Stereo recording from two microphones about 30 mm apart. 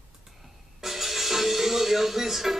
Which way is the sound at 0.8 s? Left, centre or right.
Centre.